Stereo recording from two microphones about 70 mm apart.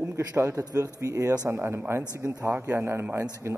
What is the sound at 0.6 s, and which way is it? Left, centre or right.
Speech, right.